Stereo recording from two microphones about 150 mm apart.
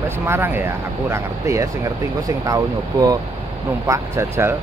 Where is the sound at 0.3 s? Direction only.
15° right (ahead or behind).